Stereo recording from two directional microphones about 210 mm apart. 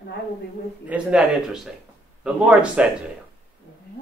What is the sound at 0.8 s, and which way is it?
Speech, 5° right (ahead or behind).